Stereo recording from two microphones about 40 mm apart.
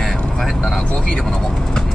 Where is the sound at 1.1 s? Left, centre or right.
Centre.